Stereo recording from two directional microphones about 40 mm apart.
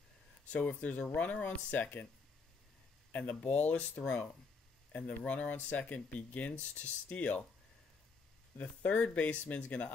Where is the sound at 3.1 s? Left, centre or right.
Left.